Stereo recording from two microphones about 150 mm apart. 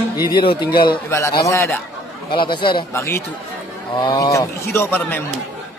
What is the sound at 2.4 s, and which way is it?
Speech, 30° left (ahead or behind).